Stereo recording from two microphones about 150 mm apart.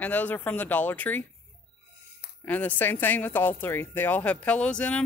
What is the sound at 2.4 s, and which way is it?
Speech, 10° left (ahead or behind).